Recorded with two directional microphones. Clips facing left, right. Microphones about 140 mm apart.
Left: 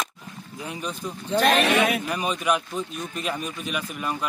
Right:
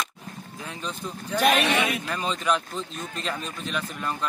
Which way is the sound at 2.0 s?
15° left (ahead or behind).